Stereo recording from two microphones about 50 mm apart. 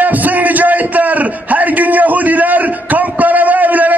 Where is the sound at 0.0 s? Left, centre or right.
Right.